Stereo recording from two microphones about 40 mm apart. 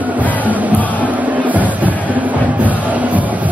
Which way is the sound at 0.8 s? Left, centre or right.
Left.